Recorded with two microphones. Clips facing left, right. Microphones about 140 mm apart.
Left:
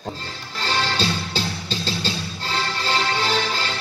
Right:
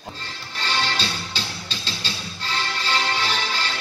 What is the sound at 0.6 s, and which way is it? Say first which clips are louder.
Music: left 3 dB; 45° left (ahead or behind).